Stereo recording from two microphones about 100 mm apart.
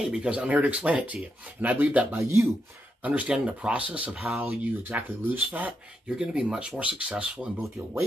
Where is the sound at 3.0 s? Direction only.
15° right (ahead or behind).